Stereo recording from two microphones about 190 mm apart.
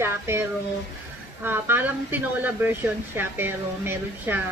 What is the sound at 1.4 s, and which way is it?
Speech, 10° right (ahead or behind).